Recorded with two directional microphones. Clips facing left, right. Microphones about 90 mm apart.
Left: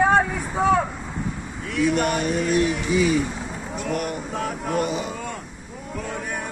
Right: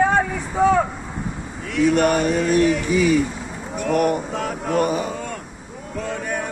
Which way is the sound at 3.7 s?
55° right (ahead or behind).